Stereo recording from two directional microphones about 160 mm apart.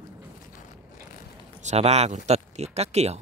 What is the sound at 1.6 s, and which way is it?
Speech, 45° right (ahead or behind).